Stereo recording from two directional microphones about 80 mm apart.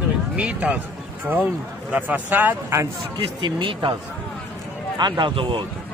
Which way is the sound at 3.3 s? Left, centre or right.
Right.